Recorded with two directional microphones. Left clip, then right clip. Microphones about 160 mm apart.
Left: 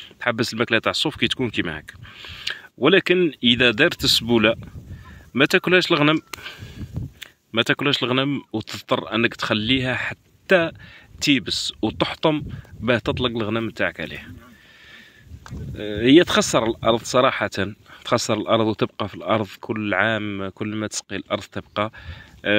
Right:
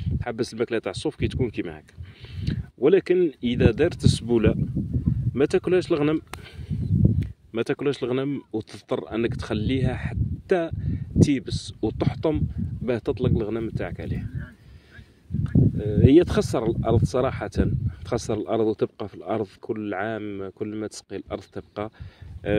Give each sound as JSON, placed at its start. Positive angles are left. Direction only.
{"t": 0.0, "sound": "speech", "side_deg": 25}
{"t": 15.8, "sound": "speech", "side_deg": 25}